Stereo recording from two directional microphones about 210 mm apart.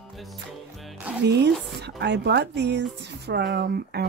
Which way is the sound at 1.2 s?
55° right (ahead or behind).